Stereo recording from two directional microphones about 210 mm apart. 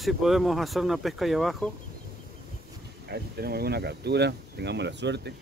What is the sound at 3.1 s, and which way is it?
Speech, 50° right (ahead or behind).